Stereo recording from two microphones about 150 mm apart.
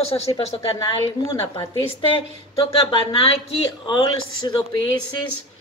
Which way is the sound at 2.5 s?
35° left (ahead or behind).